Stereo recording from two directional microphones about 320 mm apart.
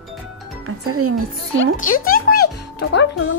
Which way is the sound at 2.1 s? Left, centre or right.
Left.